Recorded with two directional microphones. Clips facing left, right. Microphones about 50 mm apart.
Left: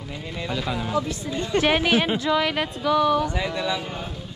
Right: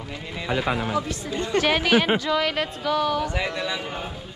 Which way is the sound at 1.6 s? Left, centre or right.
Centre.